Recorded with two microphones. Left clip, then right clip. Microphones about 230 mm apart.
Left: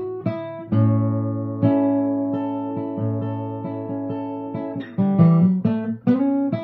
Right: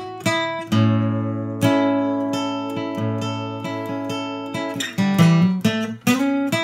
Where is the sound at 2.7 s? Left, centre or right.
Centre.